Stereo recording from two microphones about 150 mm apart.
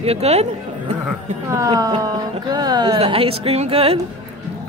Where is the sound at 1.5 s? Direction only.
25° right (ahead or behind).